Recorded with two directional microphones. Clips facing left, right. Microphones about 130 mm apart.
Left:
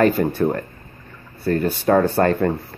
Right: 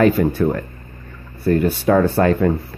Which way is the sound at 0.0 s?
Centre (ahead or behind).